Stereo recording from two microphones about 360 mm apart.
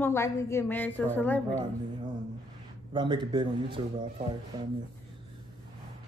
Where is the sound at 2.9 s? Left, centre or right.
Centre.